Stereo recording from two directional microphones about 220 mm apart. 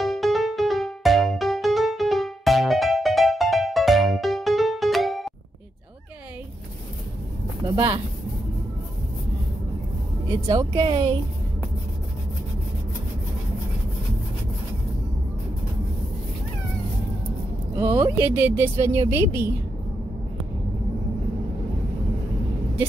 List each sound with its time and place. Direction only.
0.0 s music: centre (ahead or behind)
7.6 s speech: 15° right (ahead or behind)
10.4 s speech: 20° right (ahead or behind)
17.7 s speech: 10° right (ahead or behind)